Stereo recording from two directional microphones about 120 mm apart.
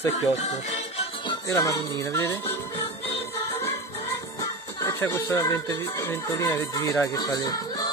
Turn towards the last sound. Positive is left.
turn(degrees=30)  # may be behind; listen again after turning